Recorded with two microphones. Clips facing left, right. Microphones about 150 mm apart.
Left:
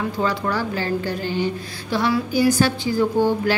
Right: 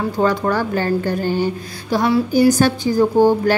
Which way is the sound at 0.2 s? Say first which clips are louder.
Right 6 dB; 50° right (ahead or behind).